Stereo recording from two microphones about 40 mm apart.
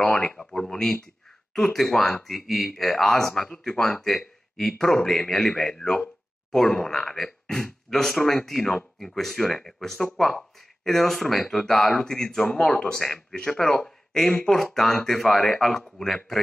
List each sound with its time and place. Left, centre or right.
0.0 s speech: centre